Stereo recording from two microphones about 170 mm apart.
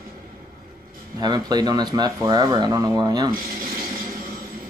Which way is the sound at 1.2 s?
25° right (ahead or behind).